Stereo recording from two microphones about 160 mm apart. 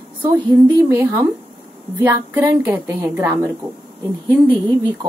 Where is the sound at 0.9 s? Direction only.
15° right (ahead or behind).